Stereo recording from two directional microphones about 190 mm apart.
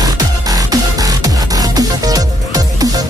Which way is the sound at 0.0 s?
20° right (ahead or behind).